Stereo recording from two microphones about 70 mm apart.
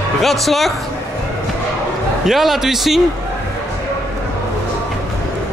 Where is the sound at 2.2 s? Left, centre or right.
Centre.